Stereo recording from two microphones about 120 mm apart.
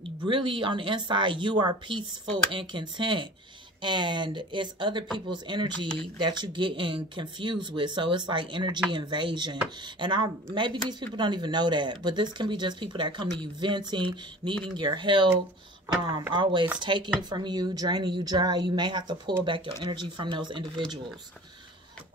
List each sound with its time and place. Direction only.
0.0 s speech: 45° right (ahead or behind)